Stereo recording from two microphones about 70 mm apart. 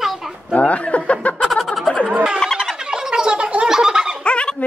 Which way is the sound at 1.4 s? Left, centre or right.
Centre.